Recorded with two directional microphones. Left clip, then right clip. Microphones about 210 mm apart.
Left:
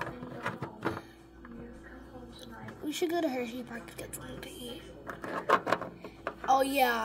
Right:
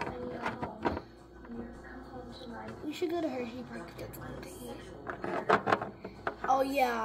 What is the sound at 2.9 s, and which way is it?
Speech, 35° left (ahead or behind).